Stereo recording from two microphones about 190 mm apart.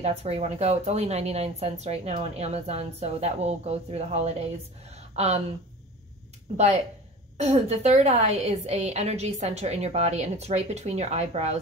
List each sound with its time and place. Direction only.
0.0 s speech: 35° right (ahead or behind)
6.5 s speech: 35° right (ahead or behind)